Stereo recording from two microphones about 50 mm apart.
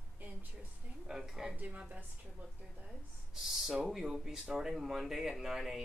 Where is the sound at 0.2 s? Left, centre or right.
Right.